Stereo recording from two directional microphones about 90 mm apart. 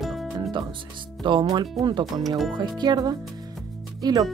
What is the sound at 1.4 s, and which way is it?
Speech, 50° right (ahead or behind).